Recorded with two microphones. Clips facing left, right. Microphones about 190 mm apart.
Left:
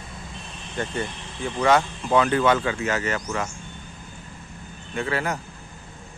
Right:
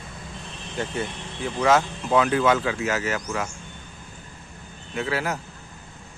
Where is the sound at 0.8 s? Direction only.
5° right (ahead or behind).